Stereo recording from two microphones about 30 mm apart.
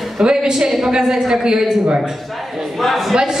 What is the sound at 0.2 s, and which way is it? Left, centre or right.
A woman's voice, right.